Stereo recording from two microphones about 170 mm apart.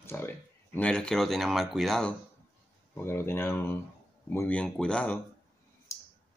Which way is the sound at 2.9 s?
15° left (ahead or behind).